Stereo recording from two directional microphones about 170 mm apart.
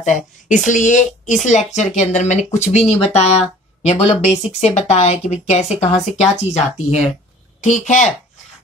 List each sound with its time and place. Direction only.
0.0 s speech: 45° left (ahead or behind)